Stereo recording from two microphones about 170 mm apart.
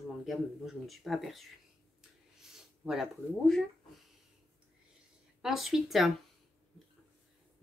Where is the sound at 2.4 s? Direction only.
5° right (ahead or behind).